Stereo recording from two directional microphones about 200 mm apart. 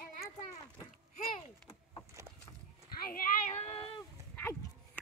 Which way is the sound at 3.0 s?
45° left (ahead or behind).